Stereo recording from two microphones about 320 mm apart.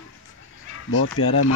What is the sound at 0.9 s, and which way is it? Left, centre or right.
Speech, left.